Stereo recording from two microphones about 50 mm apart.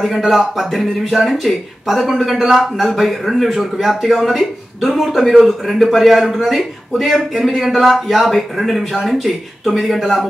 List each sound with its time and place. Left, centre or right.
0.0 s a man's voice: centre
5.8 s speech: centre